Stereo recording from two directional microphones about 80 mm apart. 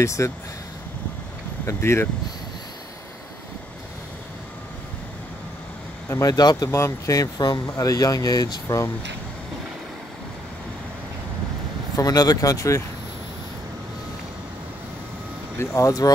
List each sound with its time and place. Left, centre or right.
0.0 s speech: left
1.7 s speech: left
6.2 s speech: left
6.7 s speech: left
12.0 s speech: left
15.6 s speech: left